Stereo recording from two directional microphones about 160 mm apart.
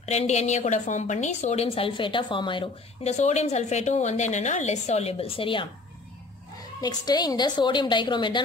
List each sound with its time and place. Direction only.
0.0 s a woman's voice: 45° left (ahead or behind)
6.8 s a woman's voice: 25° left (ahead or behind)